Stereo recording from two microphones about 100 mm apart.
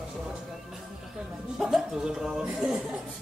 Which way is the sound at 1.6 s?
5° right (ahead or behind).